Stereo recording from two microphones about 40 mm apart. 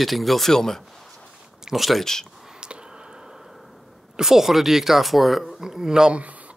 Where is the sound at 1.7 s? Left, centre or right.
Centre.